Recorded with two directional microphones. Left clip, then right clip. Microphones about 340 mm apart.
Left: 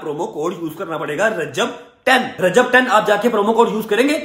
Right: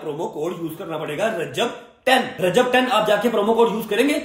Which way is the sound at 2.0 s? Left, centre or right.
Centre.